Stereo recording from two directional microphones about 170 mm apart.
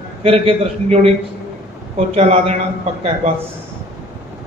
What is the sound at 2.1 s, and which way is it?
Speech, 40° right (ahead or behind).